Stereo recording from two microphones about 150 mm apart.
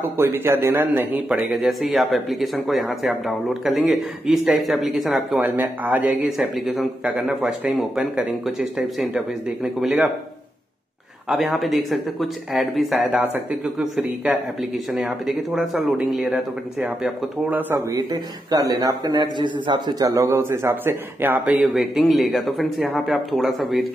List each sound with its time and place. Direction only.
0.2 s a man's voice: 15° right (ahead or behind)
1.5 s speech: centre (ahead or behind)
11.2 s speech: centre (ahead or behind)
13.0 s speech: 10° right (ahead or behind)
17.9 s a man's voice: 25° right (ahead or behind); by 23.9 s centre (ahead or behind)